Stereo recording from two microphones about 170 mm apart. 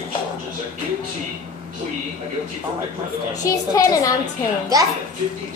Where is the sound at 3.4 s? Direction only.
20° left (ahead or behind).